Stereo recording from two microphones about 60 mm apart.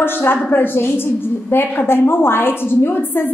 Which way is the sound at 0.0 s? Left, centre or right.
Left.